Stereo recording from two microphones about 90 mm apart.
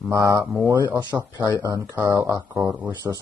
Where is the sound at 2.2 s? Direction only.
25° right (ahead or behind).